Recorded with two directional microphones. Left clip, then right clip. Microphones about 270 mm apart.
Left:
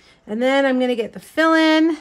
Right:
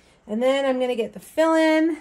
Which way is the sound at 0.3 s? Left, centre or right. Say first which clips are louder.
Left 3 dB; left.